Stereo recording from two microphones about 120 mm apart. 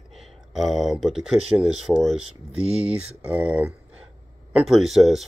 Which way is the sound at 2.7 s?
55° right (ahead or behind).